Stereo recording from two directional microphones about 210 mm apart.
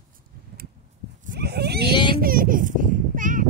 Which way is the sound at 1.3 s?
50° right (ahead or behind).